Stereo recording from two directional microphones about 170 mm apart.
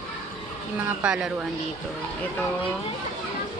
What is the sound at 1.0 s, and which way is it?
Speech, 5° right (ahead or behind).